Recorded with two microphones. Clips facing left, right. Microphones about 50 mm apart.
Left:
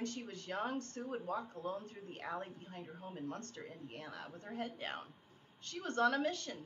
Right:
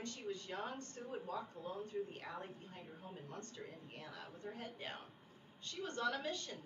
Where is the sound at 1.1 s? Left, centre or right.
Left.